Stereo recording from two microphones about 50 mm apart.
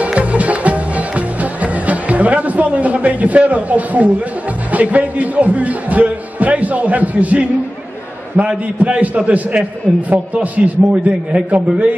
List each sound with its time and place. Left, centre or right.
0.0 s music: right
4.7 s speech: right